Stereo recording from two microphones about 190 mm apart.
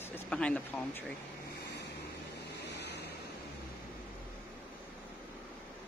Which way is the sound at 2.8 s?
60° left (ahead or behind).